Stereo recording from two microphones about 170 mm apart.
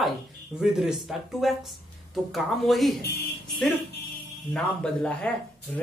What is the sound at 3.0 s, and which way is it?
Speech, 70° left (ahead or behind).